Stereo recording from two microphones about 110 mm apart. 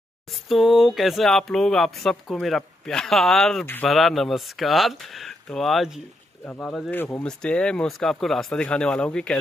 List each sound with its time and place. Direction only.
0.3 s speech: centre (ahead or behind)
6.4 s speech: 15° left (ahead or behind)